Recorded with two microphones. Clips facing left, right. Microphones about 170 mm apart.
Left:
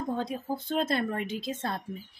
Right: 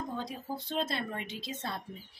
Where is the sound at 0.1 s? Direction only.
50° left (ahead or behind).